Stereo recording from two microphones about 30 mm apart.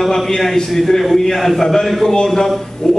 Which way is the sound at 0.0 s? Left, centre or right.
Centre.